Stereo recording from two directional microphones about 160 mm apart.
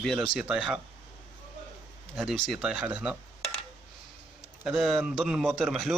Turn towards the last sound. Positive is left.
turn(degrees=0)  # may be behind; listen again after turning